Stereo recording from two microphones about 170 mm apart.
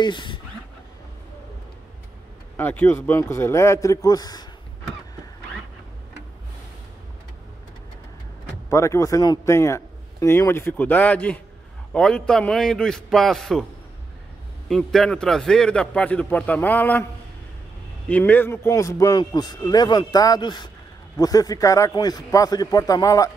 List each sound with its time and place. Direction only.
0.0 s a man's voice: 30° left (ahead or behind)
2.5 s a man's voice: 10° left (ahead or behind)
8.6 s a man's voice: 15° left (ahead or behind); by 13.7 s centre (ahead or behind)
14.7 s a man's voice: 5° left (ahead or behind)
18.0 s a man's voice: 10° left (ahead or behind)